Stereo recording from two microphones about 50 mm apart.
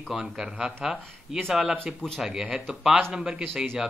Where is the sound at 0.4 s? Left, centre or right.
Centre.